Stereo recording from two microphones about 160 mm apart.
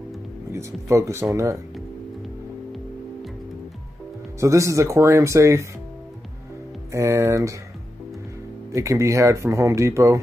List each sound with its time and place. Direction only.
0.5 s speech: 20° right (ahead or behind)
4.4 s speech: 20° right (ahead or behind)
6.9 s speech: 20° right (ahead or behind)
8.7 s speech: 20° right (ahead or behind)